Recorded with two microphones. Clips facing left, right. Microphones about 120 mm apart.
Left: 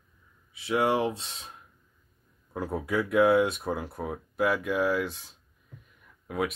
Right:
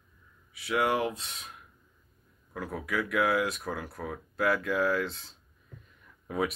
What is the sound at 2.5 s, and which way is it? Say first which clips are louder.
Speech: left 4 dB; 30° left (ahead or behind).